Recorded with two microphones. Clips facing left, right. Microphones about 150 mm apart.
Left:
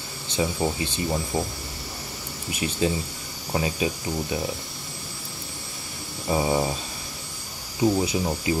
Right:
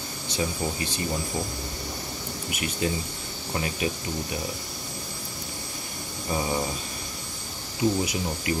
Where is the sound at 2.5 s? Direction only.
25° left (ahead or behind).